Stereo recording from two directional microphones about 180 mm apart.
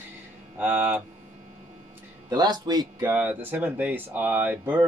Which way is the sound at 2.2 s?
20° right (ahead or behind).